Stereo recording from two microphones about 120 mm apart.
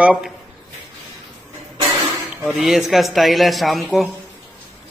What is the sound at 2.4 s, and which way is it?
Speech, centre (ahead or behind).